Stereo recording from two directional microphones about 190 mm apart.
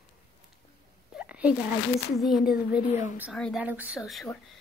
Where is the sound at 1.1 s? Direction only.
5° right (ahead or behind).